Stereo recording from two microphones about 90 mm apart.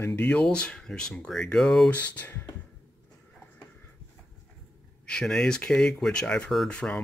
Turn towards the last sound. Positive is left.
turn(degrees=10)  # may be behind; listen again after turning